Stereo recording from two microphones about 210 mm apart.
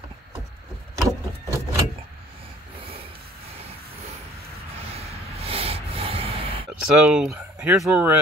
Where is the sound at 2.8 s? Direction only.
25° right (ahead or behind).